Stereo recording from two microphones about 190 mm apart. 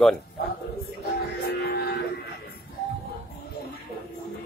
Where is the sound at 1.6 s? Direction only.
55° left (ahead or behind).